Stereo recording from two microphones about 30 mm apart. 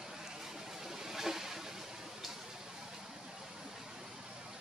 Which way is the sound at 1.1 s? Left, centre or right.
Centre.